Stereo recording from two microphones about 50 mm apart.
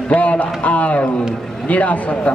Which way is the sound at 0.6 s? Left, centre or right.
Left.